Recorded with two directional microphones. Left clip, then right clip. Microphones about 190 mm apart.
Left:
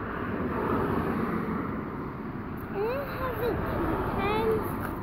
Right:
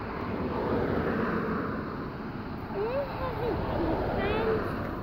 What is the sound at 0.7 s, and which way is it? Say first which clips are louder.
Vehicle: even; 15° left (ahead or behind).